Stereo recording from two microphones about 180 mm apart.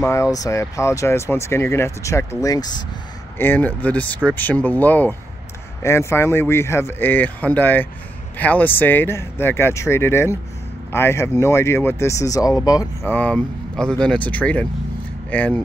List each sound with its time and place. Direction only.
0.0 s speech: 15° left (ahead or behind)